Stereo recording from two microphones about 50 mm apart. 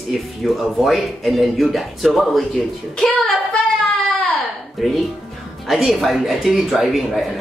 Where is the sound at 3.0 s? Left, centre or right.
Centre.